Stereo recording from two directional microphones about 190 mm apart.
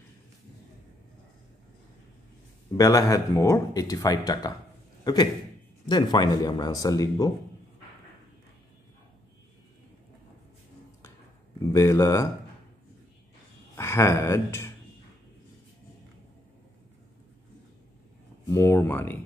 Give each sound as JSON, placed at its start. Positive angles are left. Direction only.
{"t": 2.8, "sound": "a man's voice", "side_deg": 15}
{"t": 11.6, "sound": "speech", "side_deg": 15}
{"t": 13.7, "sound": "speech", "side_deg": 15}
{"t": 18.5, "sound": "speech", "side_deg": 15}